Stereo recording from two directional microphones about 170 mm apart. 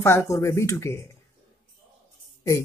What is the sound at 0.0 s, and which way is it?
Speech, 15° left (ahead or behind).